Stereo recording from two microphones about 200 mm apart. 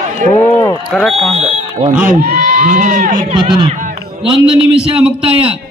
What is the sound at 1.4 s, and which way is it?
Fire alarm, 30° right (ahead or behind).